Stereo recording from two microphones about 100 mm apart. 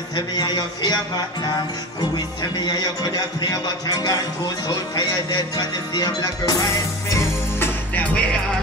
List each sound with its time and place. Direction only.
0.1 s speech: 40° left (ahead or behind)
2.0 s speech: 45° left (ahead or behind); by 8.4 s 15° left (ahead or behind)